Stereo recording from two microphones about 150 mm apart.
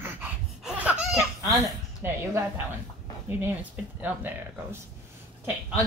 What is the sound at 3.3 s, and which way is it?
Speech, 15° right (ahead or behind).